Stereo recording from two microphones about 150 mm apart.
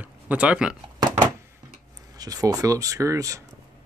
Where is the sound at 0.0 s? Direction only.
10° right (ahead or behind).